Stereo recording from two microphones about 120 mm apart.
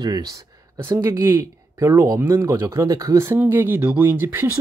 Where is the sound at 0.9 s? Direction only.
25° right (ahead or behind).